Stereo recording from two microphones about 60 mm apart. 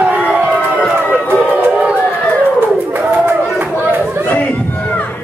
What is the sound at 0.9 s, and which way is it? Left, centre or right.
Run, right.